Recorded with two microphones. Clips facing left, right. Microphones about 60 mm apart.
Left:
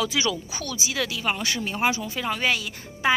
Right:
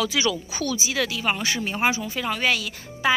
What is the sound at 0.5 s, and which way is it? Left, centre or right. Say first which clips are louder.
Speech: right 3 dB; centre.